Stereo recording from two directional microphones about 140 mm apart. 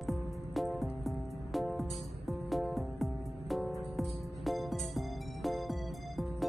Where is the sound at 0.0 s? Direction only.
Centre (ahead or behind).